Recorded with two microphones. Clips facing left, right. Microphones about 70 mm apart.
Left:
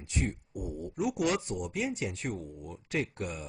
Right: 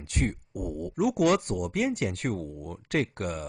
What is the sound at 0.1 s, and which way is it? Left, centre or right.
Speech, right.